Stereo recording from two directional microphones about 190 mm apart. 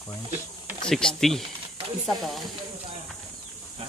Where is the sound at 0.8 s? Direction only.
5° left (ahead or behind).